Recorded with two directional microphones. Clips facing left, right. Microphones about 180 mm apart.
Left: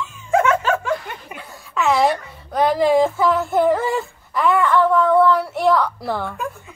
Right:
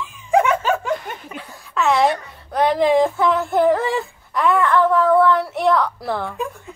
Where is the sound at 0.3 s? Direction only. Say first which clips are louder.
Even; 15° right (ahead or behind).